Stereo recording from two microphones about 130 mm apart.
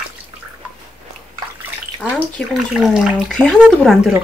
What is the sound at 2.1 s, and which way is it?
Speech, centre (ahead or behind).